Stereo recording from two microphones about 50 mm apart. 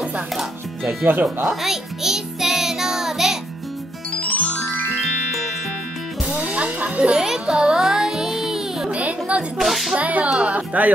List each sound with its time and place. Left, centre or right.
1.2 s music: centre
4.2 s music: left
4.6 s music: left
6.4 s music: right
7.2 s music: centre
8.8 s a sound: right
9.6 s whip: centre
9.9 s speech: right